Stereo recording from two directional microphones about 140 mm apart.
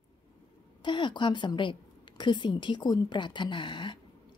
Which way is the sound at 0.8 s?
35° left (ahead or behind).